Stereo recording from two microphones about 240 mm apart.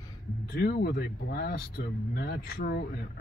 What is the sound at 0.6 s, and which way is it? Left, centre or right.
Speech, left.